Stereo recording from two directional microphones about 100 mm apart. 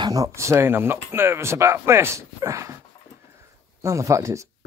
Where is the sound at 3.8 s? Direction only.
30° right (ahead or behind).